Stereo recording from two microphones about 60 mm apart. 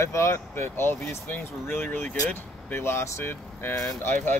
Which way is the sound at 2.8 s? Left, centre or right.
Left.